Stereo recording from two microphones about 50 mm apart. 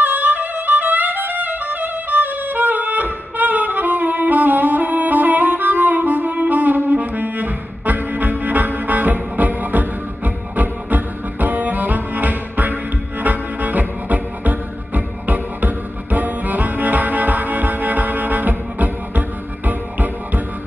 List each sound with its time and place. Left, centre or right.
0.0 s music: right